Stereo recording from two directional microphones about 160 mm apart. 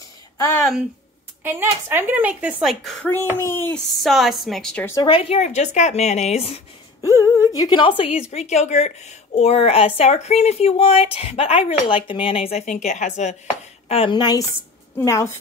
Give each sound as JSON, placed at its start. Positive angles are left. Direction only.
{"t": 1.4, "sound": "speech", "side_deg": -15}
{"t": 3.3, "sound": "speech", "side_deg": 15}
{"t": 4.0, "sound": "a woman's voice", "side_deg": 0}
{"t": 5.0, "sound": "a woman's voice", "side_deg": 35}
{"t": 7.0, "sound": "a woman's voice", "side_deg": 20}
{"t": 13.8, "sound": "a woman's voice", "side_deg": 35}
{"t": 15.0, "sound": "speech", "side_deg": 15}